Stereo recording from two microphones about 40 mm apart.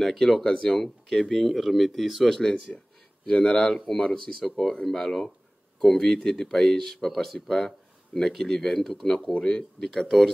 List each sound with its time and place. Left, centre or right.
0.0 s speech: centre
0.4 s speech: centre
1.3 s speech: centre
2.2 s speech: centre
4.4 s speech: centre